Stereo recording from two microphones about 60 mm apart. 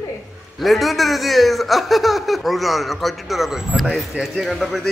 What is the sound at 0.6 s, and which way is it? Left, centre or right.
A man's voice, centre.